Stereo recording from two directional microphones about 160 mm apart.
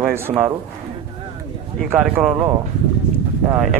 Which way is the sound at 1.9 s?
10° right (ahead or behind).